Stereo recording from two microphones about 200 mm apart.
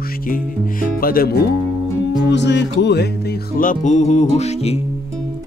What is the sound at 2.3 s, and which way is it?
Music, 60° left (ahead or behind).